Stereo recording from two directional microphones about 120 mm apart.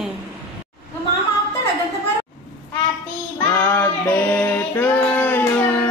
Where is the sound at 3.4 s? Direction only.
15° left (ahead or behind).